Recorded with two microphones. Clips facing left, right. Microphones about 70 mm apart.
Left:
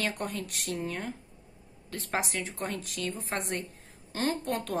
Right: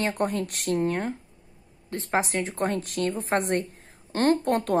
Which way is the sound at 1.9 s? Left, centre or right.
Right.